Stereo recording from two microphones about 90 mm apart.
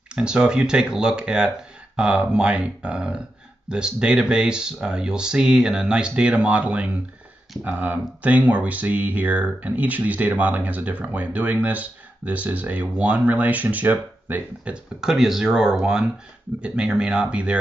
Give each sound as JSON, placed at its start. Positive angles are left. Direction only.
{"t": 0.1, "sound": "speech", "side_deg": -10}
{"t": 15.0, "sound": "speech", "side_deg": -5}